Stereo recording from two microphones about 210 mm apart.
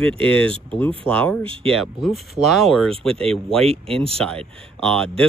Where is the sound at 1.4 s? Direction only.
25° right (ahead or behind).